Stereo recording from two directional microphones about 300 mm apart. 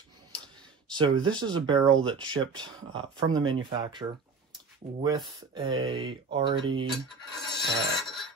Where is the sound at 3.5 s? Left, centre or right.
Centre.